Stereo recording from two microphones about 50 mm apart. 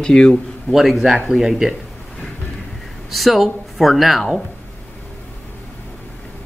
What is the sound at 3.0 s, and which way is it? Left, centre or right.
Speech, centre.